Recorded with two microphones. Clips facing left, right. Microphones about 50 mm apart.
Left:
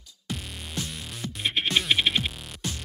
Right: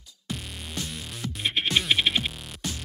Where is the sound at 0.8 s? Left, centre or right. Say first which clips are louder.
Right 1 dB; centre.